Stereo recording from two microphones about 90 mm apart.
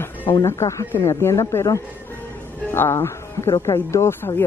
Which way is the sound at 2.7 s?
25° left (ahead or behind).